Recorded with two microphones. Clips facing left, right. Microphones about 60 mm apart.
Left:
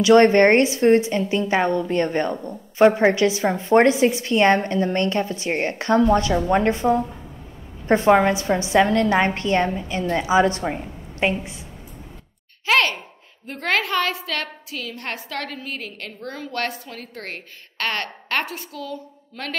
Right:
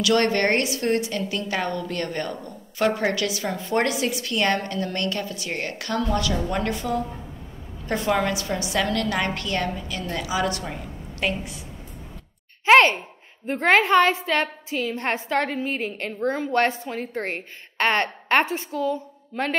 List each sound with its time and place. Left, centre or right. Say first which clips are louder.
0.0 s a woman's voice: left 8 dB; left
12.6 s a child's voice: right 5 dB; right